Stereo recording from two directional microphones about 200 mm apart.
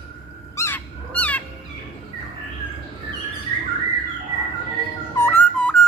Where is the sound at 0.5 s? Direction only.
10° left (ahead or behind).